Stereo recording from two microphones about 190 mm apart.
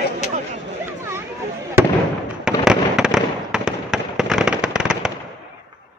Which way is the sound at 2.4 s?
5° right (ahead or behind).